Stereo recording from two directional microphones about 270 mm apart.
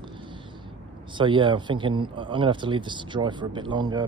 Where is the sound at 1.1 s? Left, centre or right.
Centre.